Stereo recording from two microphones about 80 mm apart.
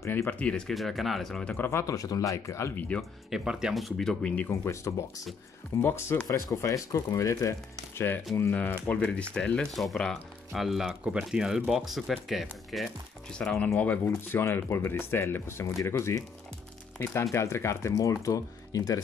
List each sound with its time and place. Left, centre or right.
0.0 s speech: left; by 1.6 s centre
1.6 s speech: left
2.0 s speech: left
3.0 s speech: centre
4.5 s speech: left
5.8 s speech: left
8.3 s speech: centre
8.8 s speech: centre
9.7 s speech: centre
12.8 s speech: centre
14.0 s speech: left